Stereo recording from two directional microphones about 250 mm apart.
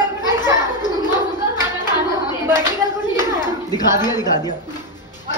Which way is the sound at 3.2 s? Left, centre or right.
Centre.